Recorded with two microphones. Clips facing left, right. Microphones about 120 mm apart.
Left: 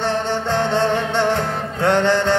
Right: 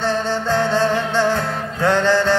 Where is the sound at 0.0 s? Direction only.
20° left (ahead or behind).